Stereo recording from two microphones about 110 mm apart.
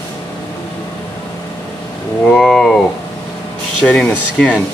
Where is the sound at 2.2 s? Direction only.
5° left (ahead or behind).